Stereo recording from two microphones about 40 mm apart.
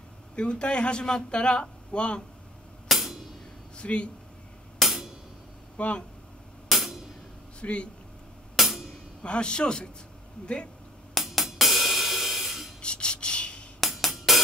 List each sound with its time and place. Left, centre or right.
0.4 s a man's voice: left
2.9 s music: centre
3.7 s speech: left
4.7 s music: centre
5.8 s speech: left
6.7 s music: centre
7.6 s a man's voice: left
8.5 s music: centre
9.2 s a man's voice: left
11.1 s music: centre
12.8 s a sound: left
13.7 s music: centre